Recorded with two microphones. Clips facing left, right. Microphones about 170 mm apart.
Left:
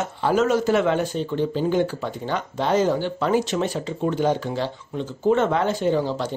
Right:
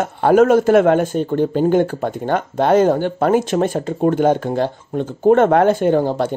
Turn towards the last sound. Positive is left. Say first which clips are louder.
# right 6 dB
turn(degrees=-55)  # may be behind; listen again after turning